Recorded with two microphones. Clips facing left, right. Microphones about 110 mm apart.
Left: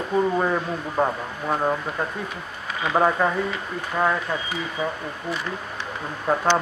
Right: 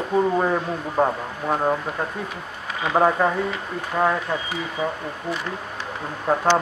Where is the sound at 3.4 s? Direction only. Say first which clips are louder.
Right 1 dB; 5° right (ahead or behind).